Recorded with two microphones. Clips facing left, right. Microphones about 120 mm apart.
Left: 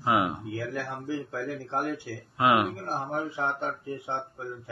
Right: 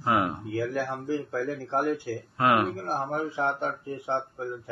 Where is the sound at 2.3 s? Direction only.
10° left (ahead or behind).